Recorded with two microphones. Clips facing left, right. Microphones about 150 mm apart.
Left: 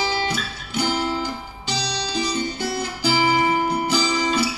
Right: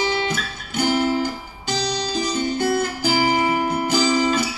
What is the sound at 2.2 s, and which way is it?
Guitar, 50° right (ahead or behind).